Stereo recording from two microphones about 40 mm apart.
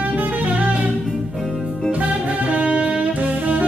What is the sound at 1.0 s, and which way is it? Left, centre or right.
Music, centre.